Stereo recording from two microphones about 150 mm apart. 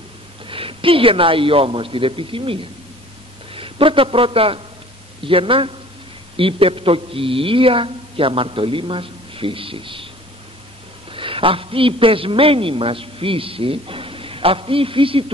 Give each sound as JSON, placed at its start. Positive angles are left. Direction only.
{"t": 0.5, "sound": "a man's voice", "side_deg": -35}
{"t": 11.1, "sound": "a man's voice", "side_deg": -35}